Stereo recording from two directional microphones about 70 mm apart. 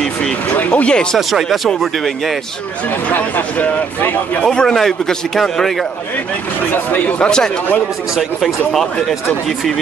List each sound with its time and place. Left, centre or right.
0.5 s speech: left
1.1 s speech: centre
3.1 s speech: left
4.5 s a man's voice: centre
6.7 s speech: left
7.2 s a man's voice: centre